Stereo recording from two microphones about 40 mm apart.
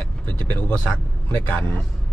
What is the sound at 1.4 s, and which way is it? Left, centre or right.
Speech, left.